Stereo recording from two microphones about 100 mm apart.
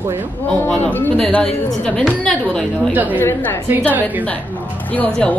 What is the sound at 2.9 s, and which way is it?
Speech, 15° right (ahead or behind).